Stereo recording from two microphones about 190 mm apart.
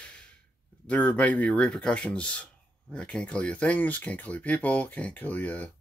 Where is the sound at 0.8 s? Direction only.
5° left (ahead or behind).